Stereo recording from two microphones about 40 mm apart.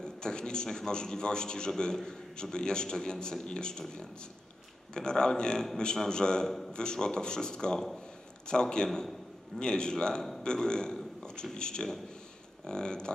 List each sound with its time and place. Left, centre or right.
0.0 s a man's voice: centre
4.9 s a man's voice: centre
10.4 s a sound: centre
11.5 s a man's voice: centre